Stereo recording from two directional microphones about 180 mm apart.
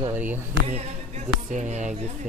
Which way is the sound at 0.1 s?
10° right (ahead or behind).